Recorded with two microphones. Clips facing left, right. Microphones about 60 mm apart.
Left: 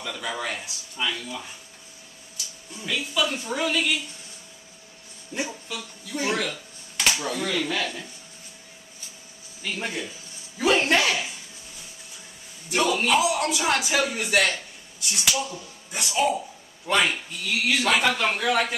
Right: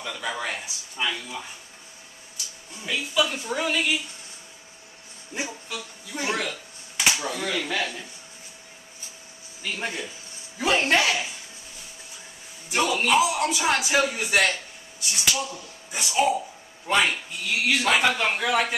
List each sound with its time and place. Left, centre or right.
0.0 s speech: centre
2.8 s speech: centre
5.3 s speech: centre
9.6 s speech: centre
10.9 s a sound: centre
12.6 s a man's voice: centre